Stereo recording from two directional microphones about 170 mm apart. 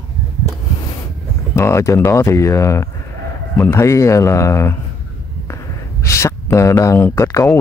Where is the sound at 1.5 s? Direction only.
15° left (ahead or behind).